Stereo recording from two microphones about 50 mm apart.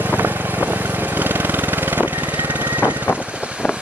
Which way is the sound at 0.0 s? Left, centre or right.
Right.